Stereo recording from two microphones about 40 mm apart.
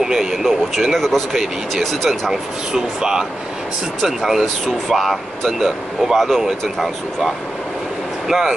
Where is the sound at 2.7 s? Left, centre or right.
Centre.